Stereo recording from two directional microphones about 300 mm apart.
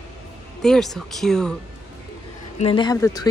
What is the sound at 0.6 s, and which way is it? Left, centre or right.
Speech, centre.